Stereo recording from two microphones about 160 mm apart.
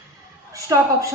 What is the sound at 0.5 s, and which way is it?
Speech, 20° right (ahead or behind).